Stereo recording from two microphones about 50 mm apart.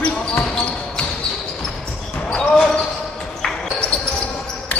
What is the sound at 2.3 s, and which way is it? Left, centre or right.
Basketball bounce, centre.